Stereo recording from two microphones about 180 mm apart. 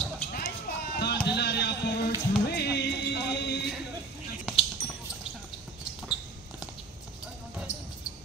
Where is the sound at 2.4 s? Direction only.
65° left (ahead or behind).